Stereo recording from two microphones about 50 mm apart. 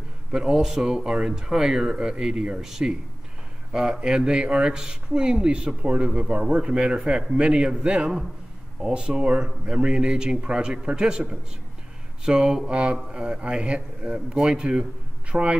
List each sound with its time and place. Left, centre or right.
0.3 s speech: centre